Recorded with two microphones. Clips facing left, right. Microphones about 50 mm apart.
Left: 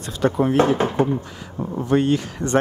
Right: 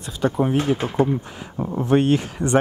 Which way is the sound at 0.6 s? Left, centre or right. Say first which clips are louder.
Left 5 dB; left.